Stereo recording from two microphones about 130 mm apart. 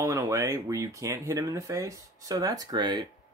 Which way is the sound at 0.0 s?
20° right (ahead or behind).